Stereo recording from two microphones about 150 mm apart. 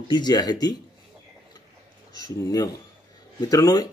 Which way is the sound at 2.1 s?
25° left (ahead or behind).